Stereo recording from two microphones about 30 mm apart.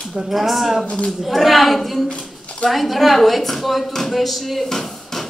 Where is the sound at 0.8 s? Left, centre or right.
Left.